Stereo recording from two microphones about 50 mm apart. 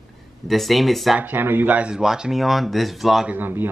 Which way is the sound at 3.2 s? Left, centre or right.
Right.